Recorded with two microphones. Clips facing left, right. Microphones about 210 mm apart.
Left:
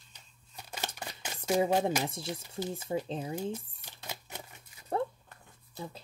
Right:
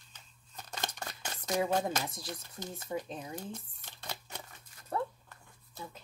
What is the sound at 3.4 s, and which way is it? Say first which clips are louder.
Crumpling: left 7 dB; 10° left (ahead or behind).